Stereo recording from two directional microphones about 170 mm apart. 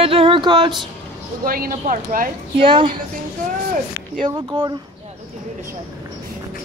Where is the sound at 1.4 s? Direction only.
55° right (ahead or behind).